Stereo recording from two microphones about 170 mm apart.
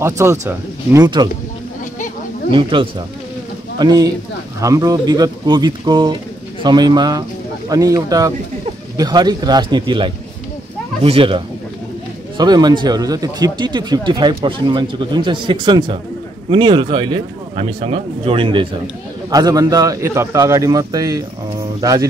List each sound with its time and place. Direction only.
0.0 s speech: 15° right (ahead or behind)
2.5 s speech: 30° right (ahead or behind)